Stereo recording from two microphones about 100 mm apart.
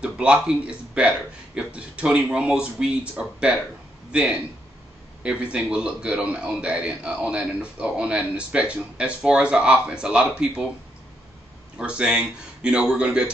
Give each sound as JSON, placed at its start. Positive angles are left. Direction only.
{"t": 0.0, "sound": "a man's voice", "side_deg": -10}
{"t": 11.8, "sound": "a man's voice", "side_deg": -10}